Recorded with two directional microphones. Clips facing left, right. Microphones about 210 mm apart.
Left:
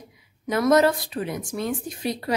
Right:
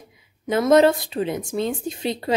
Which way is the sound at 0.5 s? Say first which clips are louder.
Right 3 dB; 25° right (ahead or behind).